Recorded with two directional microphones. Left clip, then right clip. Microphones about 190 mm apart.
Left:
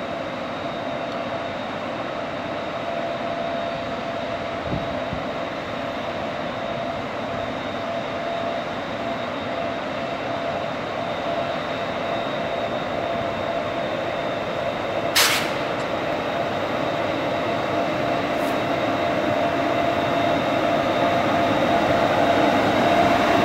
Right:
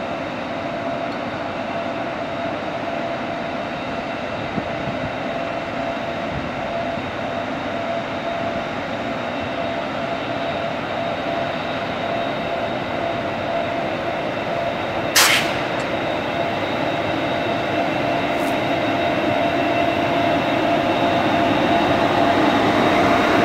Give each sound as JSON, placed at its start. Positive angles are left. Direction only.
{"t": 15.2, "sound": "vehicle", "side_deg": -50}
{"t": 22.4, "sound": "vehicle", "side_deg": 40}